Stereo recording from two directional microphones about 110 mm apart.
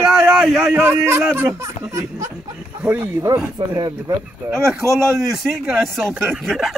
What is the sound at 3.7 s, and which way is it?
Speech, 40° right (ahead or behind).